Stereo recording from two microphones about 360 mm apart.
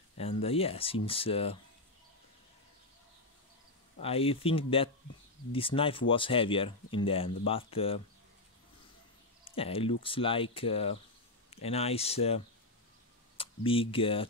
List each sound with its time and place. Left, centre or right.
0.2 s speech: centre
4.0 s speech: centre
9.4 s speech: centre
13.4 s speech: centre